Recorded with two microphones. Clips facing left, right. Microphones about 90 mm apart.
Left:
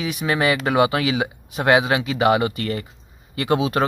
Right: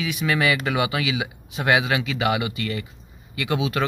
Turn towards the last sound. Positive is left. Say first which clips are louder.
# left 4 dB
turn(degrees=35)  # may be behind; listen again after turning